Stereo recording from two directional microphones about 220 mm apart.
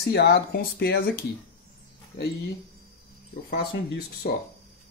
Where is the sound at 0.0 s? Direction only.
50° left (ahead or behind).